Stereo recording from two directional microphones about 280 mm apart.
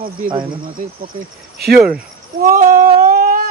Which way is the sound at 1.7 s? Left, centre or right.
Centre.